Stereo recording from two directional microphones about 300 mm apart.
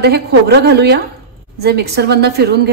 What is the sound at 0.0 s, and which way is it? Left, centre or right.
A woman's voice, right.